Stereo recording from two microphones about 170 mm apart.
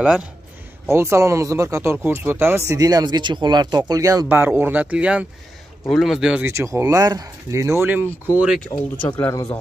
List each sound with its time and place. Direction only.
0.0 s speech: 5° right (ahead or behind)
0.8 s speech: 15° right (ahead or behind)
6.5 s speech: 15° right (ahead or behind)
8.7 s speech: 25° left (ahead or behind)